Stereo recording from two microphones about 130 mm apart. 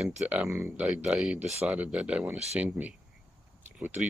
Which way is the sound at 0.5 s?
15° right (ahead or behind).